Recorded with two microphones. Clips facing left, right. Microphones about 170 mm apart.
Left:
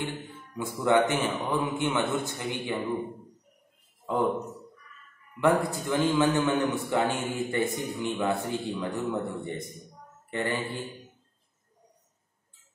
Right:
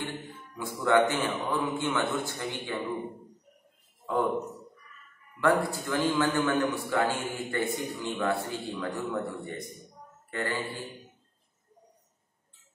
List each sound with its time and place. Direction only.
0.6 s a man's voice: 20° left (ahead or behind)
4.1 s speech: 15° left (ahead or behind)
5.4 s a man's voice: 20° left (ahead or behind)